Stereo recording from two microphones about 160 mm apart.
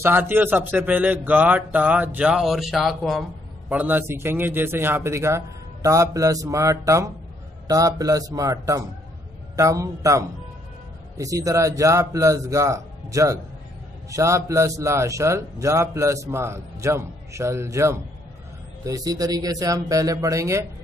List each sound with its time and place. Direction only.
0.0 s a man's voice: 15° right (ahead or behind)